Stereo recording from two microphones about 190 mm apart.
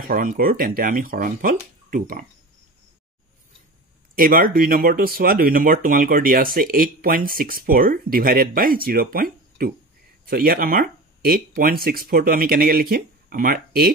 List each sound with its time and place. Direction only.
0.1 s speech: 50° right (ahead or behind)
4.1 s speech: 50° right (ahead or behind)